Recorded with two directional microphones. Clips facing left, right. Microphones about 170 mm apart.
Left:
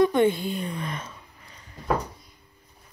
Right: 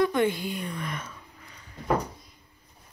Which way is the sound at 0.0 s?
25° left (ahead or behind).